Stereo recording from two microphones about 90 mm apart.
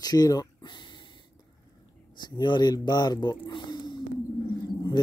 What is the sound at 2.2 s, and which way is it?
Speech, 55° left (ahead or behind).